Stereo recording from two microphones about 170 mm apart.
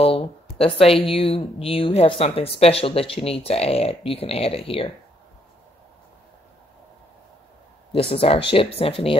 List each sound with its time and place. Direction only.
0.0 s a sound: 35° left (ahead or behind)
1.1 s speech: 30° left (ahead or behind)
7.9 s speech: 35° left (ahead or behind)